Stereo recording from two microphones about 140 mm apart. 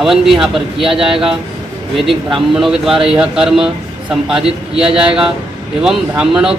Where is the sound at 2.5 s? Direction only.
5° right (ahead or behind).